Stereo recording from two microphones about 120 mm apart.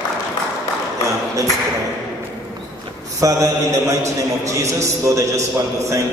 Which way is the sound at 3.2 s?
30° right (ahead or behind).